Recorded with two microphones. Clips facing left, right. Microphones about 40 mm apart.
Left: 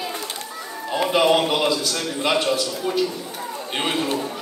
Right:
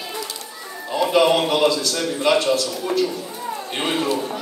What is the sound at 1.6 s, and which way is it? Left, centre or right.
A man's voice, centre.